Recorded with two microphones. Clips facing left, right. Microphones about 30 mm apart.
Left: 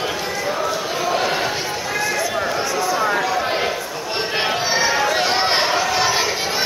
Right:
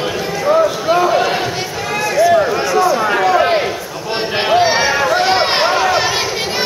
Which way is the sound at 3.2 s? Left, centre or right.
Right.